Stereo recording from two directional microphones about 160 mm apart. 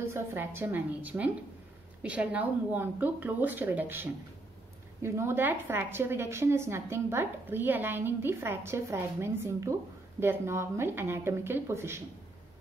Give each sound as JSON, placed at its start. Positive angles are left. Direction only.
{"t": 0.0, "sound": "a woman's voice", "side_deg": -15}